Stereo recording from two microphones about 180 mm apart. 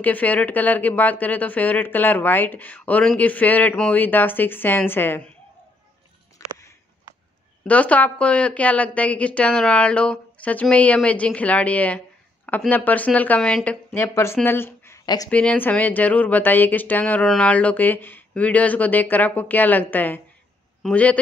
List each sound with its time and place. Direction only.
0.0 s speech: 10° left (ahead or behind)
6.4 s a sound: 15° left (ahead or behind)
7.6 s speech: 10° left (ahead or behind)